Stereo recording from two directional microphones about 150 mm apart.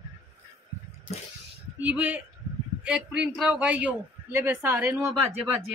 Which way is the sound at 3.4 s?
5° right (ahead or behind).